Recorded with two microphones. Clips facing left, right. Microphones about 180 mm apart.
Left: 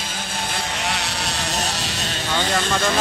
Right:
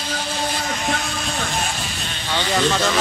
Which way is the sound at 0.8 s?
75° left (ahead or behind).